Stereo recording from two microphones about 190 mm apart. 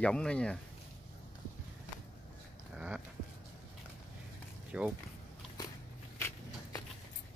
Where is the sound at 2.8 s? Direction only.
5° right (ahead or behind).